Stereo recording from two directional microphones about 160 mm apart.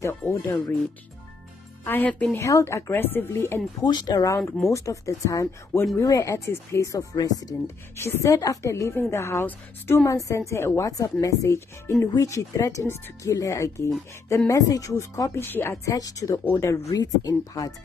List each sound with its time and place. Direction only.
0.3 s a woman's voice: 15° left (ahead or behind)
1.9 s a woman's voice: 10° left (ahead or behind)